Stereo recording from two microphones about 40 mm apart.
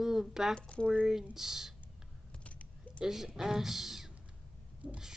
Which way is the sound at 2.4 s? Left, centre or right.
Left.